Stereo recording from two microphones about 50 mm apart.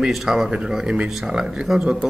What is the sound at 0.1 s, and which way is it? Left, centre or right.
Speech, centre.